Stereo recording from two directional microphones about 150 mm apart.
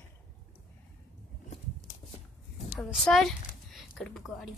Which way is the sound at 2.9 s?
Centre (ahead or behind).